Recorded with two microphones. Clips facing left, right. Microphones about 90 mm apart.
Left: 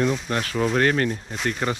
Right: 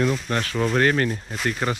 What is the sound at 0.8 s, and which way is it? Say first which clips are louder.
Speech: right 1 dB; 40° right (ahead or behind).